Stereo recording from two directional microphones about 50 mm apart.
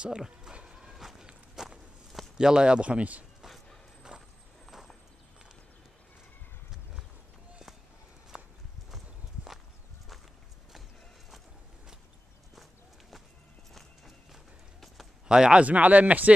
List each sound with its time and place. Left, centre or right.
0.0 s dog: centre
0.9 s a sound: centre
1.5 s walk: centre
2.3 s speech: centre
4.6 s a sound: centre
8.3 s clip-clop: centre
8.9 s clip-clop: centre
13.7 s clip-clop: centre
15.2 s speech: centre
15.6 s speech: right